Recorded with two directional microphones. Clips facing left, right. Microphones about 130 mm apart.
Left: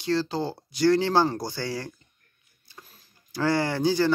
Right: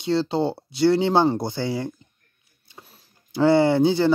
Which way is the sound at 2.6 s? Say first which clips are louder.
Right 2 dB; 25° right (ahead or behind).